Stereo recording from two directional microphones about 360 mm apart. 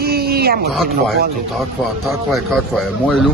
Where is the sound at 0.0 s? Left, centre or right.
Right.